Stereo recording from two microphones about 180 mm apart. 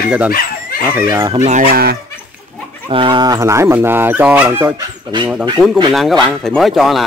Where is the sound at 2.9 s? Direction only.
25° right (ahead or behind).